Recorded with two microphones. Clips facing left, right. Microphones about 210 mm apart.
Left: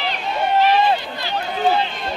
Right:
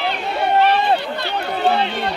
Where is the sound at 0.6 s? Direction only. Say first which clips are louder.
Left 1 dB; 60° right (ahead or behind).